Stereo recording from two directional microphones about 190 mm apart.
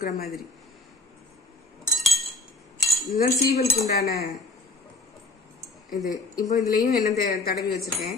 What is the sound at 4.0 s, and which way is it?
Cutlery, 55° left (ahead or behind).